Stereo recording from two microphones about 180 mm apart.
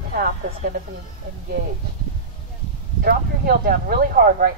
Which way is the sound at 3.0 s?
55° right (ahead or behind).